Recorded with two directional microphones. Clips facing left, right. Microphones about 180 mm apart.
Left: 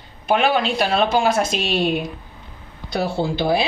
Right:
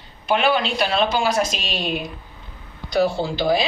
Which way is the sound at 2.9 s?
30° left (ahead or behind).